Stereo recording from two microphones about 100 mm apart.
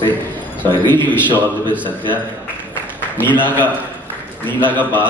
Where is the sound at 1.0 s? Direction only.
20° left (ahead or behind).